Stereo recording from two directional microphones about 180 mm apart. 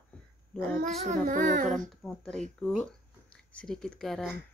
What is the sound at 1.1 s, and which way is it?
Speech, 45° right (ahead or behind).